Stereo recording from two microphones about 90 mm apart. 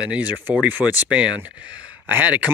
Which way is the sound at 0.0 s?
15° right (ahead or behind).